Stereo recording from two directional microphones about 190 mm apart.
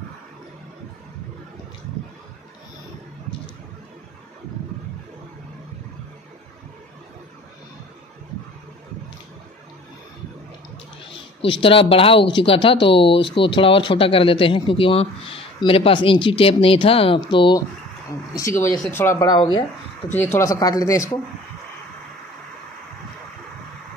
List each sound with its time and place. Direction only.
11.1 s speech: 25° left (ahead or behind)
18.3 s speech: 15° left (ahead or behind)
20.2 s speech: 10° left (ahead or behind)